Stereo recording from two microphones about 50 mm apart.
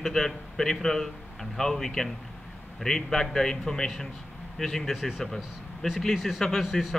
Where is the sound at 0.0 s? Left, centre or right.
Centre.